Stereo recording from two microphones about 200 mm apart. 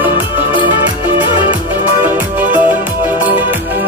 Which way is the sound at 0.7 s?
25° left (ahead or behind).